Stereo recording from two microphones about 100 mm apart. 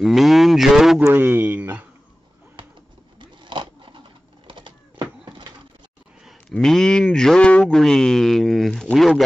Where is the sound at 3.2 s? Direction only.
50° right (ahead or behind).